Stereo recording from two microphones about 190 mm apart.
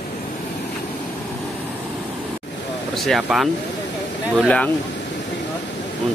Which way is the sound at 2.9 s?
Centre (ahead or behind).